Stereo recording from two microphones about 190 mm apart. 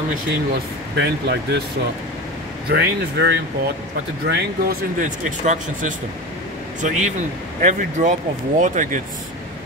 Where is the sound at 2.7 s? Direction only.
60° right (ahead or behind).